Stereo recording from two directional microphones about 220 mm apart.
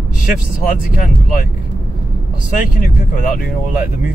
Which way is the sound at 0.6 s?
40° left (ahead or behind).